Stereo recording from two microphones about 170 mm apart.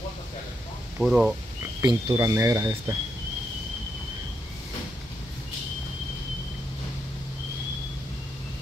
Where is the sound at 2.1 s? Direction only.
15° right (ahead or behind).